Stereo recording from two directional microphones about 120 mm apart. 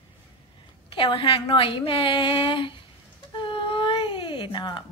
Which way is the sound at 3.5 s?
45° left (ahead or behind).